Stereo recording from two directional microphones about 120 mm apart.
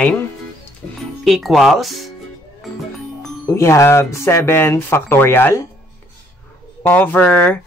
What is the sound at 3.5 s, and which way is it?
Speech, 20° left (ahead or behind).